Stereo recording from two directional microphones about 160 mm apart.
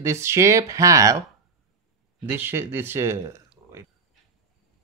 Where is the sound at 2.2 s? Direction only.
10° right (ahead or behind).